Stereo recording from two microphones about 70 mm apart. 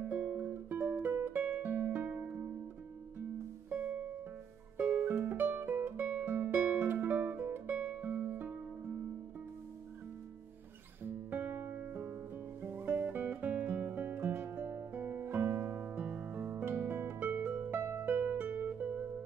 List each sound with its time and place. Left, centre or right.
0.1 s music: centre
3.7 s music: right
6.2 s music: right
11.1 s music: right